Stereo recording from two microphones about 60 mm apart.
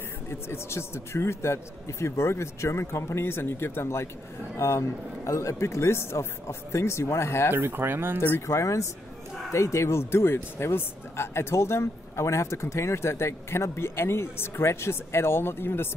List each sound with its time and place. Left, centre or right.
0.3 s speech: left
7.5 s speech: right
8.5 s speech: left